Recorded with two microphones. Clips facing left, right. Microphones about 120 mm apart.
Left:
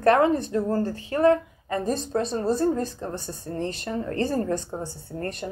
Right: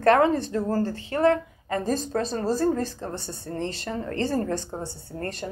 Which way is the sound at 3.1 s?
30° right (ahead or behind).